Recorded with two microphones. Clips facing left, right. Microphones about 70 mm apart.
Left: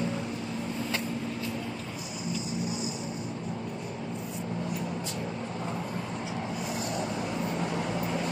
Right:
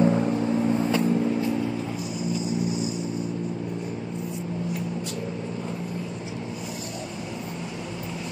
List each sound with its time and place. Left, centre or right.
0.0 s vehicle: right